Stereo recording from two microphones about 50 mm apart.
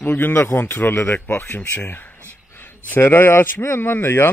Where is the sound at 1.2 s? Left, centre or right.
Left.